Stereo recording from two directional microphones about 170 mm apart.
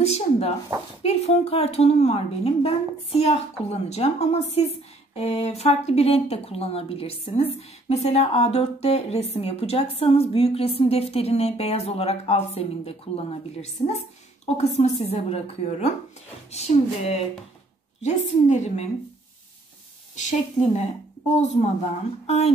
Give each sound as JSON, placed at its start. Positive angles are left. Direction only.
{"t": 0.0, "sound": "speech", "side_deg": 40}
{"t": 20.2, "sound": "a woman's voice", "side_deg": 45}
{"t": 22.2, "sound": "speech", "side_deg": 40}